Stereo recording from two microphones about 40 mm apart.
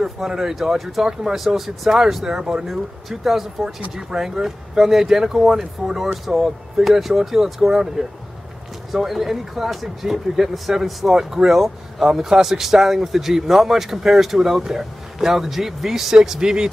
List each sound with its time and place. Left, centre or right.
0.0 s speech: centre
2.6 s speech: centre
8.0 s speech: right
8.9 s speech: centre